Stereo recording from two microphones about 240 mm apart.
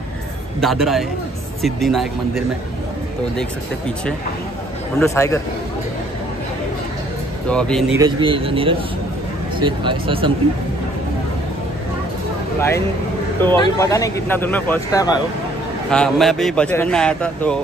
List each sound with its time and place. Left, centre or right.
0.6 s speech: centre
5.0 s speech: centre
7.4 s speech: centre
8.0 s a man's voice: right
13.4 s speech: centre
15.9 s speech: centre